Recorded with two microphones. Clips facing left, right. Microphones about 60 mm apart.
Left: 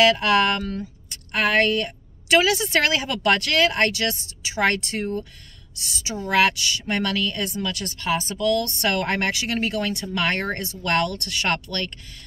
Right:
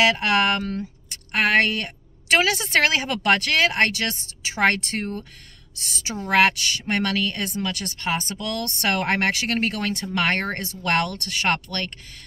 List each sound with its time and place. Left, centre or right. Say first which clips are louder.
0.0 s speech: left 2 dB; right
2.2 s speech: left 2 dB; right
6.0 s speech: right 1 dB; right